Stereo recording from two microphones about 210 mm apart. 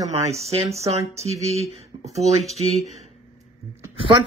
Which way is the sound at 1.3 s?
30° left (ahead or behind).